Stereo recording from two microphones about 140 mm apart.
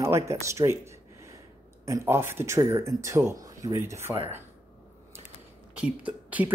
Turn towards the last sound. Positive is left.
turn(degrees=-10)  # may be behind; listen again after turning